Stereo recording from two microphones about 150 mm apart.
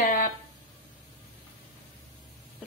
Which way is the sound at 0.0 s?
60° left (ahead or behind).